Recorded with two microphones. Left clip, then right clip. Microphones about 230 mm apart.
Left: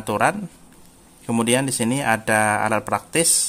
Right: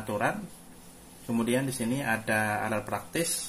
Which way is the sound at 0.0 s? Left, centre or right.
Left.